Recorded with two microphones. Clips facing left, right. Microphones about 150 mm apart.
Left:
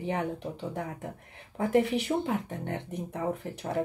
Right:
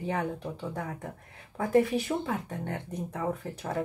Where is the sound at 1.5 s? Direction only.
20° left (ahead or behind).